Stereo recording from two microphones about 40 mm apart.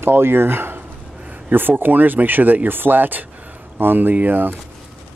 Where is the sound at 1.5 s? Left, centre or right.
Right.